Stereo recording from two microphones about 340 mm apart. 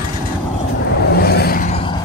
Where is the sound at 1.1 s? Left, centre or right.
Left.